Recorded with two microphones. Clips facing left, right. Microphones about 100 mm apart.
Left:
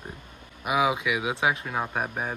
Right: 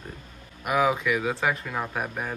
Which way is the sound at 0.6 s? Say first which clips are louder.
Right 1 dB; 10° left (ahead or behind).